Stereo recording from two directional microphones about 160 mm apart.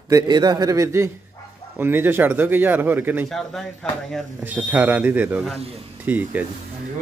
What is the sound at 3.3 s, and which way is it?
Speech, centre (ahead or behind).